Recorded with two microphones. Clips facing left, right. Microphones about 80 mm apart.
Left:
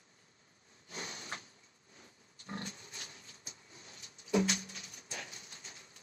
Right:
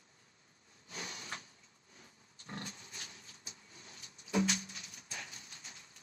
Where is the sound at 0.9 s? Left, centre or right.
Left.